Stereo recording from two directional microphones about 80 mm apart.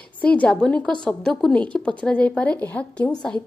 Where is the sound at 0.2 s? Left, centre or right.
Centre.